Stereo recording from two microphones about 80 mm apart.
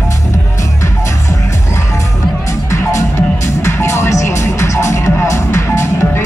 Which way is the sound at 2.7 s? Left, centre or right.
Left.